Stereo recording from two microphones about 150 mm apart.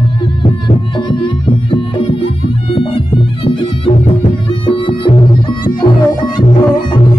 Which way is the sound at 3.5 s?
40° left (ahead or behind).